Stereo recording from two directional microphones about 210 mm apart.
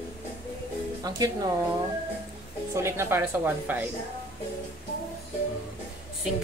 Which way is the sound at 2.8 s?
10° right (ahead or behind).